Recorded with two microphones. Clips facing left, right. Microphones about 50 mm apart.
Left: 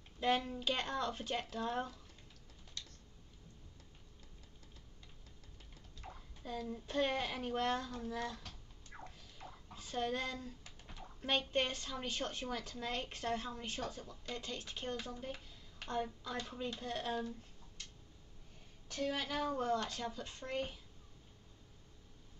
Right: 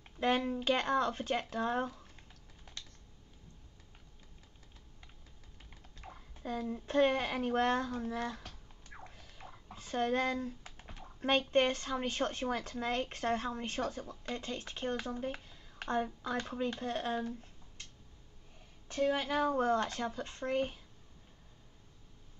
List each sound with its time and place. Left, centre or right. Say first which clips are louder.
0.4 s speech: right 7 dB; right
0.7 s speech: right 7 dB; right
6.0 s a sound: right 1 dB; right
6.4 s speech: right 5 dB; right
8.9 s a sound: right 1 dB; right
9.8 s a child's voice: right 6 dB; right
18.9 s speech: right 7 dB; right
19.6 s speech: right 5 dB; right